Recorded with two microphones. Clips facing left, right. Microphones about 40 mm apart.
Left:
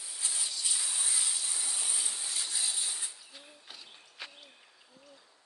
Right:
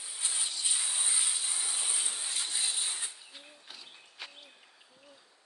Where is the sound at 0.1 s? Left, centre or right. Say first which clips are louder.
Right 1 dB; right.